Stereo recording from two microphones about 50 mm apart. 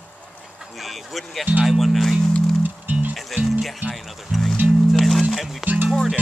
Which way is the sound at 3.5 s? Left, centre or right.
Centre.